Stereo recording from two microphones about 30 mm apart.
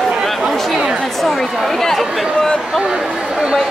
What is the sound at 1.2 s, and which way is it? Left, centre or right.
Speech, centre.